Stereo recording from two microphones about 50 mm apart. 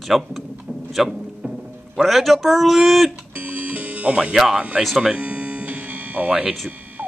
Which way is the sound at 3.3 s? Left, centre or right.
Right.